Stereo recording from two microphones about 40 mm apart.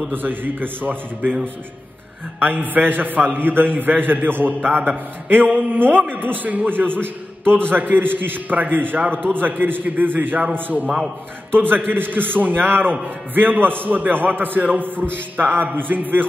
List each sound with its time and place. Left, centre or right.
0.1 s a man's voice: right
2.5 s a man's voice: right